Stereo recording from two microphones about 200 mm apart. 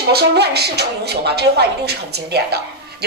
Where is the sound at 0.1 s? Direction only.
55° right (ahead or behind).